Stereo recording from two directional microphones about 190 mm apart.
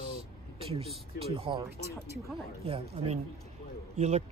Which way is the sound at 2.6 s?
30° right (ahead or behind).